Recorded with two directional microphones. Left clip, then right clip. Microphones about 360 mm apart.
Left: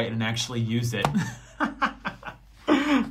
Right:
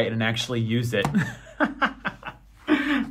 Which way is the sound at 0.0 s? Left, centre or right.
Centre.